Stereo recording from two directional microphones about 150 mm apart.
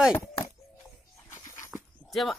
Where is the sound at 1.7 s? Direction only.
Centre (ahead or behind).